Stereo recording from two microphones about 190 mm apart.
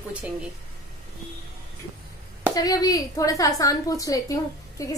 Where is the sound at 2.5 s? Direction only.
20° left (ahead or behind).